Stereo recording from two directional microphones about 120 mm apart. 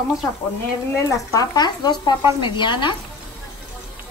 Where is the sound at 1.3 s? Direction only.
35° left (ahead or behind).